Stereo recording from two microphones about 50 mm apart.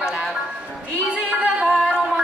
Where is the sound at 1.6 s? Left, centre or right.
Centre.